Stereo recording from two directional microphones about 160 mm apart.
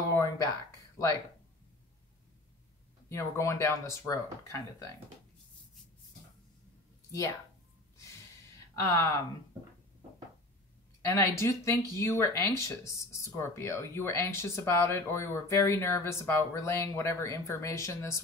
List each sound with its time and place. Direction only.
0.1 s a sound: 20° left (ahead or behind)
3.1 s speech: 20° left (ahead or behind)
7.1 s speech: 20° left (ahead or behind)
8.8 s speech: 20° left (ahead or behind)
11.1 s speech: 20° left (ahead or behind)